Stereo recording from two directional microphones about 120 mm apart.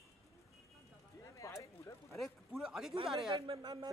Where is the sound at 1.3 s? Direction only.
25° left (ahead or behind).